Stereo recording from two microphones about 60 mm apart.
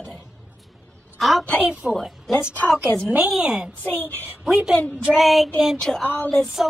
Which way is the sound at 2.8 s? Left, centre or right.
Right.